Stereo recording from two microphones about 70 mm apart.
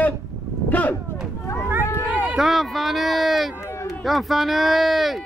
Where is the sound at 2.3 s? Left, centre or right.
Centre.